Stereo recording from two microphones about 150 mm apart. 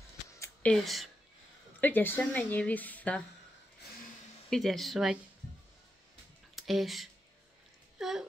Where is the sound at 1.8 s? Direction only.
15° left (ahead or behind).